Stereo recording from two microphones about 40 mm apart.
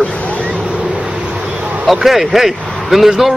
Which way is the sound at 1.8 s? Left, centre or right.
Centre.